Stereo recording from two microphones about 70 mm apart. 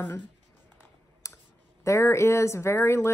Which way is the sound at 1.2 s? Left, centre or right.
Left.